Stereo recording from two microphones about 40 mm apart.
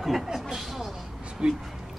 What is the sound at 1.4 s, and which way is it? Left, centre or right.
Speech, right.